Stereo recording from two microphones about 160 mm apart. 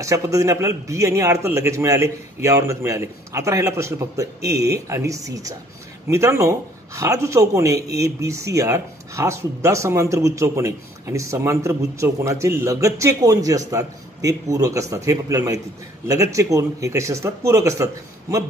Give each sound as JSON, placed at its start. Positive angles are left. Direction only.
{"t": 0.0, "sound": "speech", "side_deg": -20}